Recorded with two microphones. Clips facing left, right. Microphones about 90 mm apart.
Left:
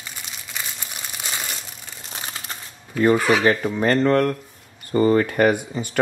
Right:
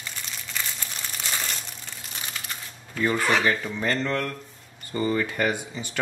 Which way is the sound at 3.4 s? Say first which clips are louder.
Left 6 dB; 45° left (ahead or behind).